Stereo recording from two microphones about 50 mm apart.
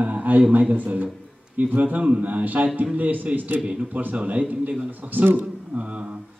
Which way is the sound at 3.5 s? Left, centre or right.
Right.